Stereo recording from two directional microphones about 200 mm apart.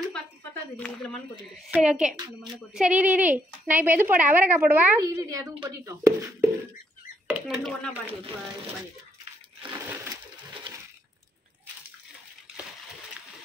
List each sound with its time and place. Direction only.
0.7 s a woman's voice: 5° left (ahead or behind); by 6.1 s 15° right (ahead or behind)
7.3 s speech: centre (ahead or behind)